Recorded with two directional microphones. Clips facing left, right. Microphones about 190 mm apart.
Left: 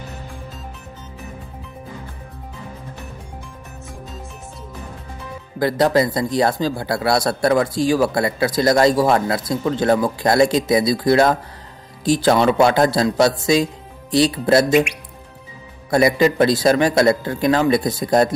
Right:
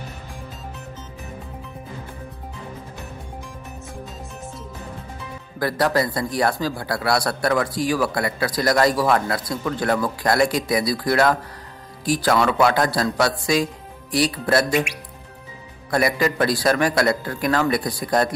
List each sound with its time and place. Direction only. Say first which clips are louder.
5.6 s speech: left 4 dB; 20° left (ahead or behind)
15.9 s speech: left 5 dB; 20° left (ahead or behind)